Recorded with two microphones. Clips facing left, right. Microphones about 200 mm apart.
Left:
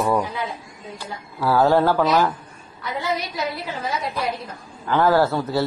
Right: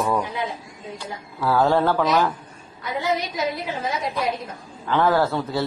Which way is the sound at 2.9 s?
20° right (ahead or behind).